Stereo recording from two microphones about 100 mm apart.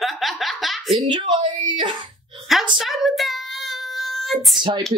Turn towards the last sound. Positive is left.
turn(degrees=0)  # may be behind; listen again after turning